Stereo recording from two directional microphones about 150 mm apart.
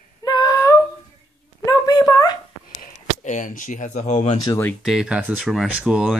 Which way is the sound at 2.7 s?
65° left (ahead or behind).